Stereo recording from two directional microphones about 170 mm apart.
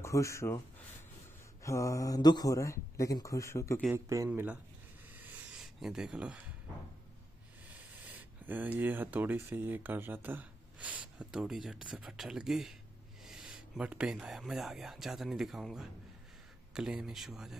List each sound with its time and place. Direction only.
0.0 s speech: 15° left (ahead or behind)
1.6 s speech: 20° left (ahead or behind)
4.3 s speech: 10° right (ahead or behind)
5.2 s a sound: 5° right (ahead or behind)
7.6 s speech: 10° right (ahead or behind)